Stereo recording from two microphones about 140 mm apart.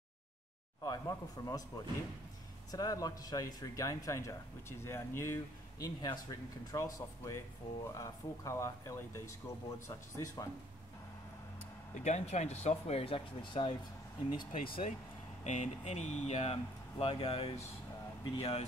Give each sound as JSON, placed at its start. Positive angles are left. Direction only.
{"t": 0.8, "sound": "speech", "side_deg": 25}
{"t": 12.0, "sound": "speech", "side_deg": 55}
{"t": 15.4, "sound": "speech", "side_deg": 55}